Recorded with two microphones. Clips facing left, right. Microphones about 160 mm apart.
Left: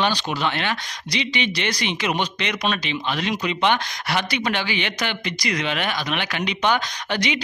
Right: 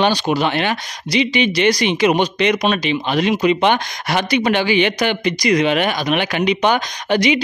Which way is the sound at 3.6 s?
50° right (ahead or behind).